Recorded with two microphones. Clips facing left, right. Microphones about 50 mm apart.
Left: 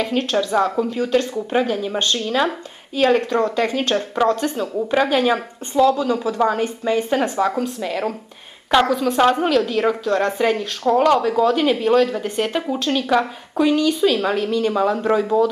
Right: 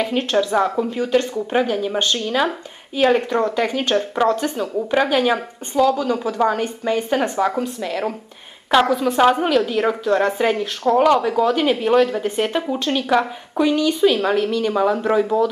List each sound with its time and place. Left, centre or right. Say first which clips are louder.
0.0 s a woman's voice: right 1 dB; centre
0.8 s speech: even; centre
1.3 s a woman's voice: even; centre
13.8 s a woman's voice: right 1 dB; centre
14.2 s speech: right 1 dB; centre